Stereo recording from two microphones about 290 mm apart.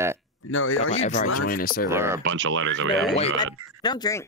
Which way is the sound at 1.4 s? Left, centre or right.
Left.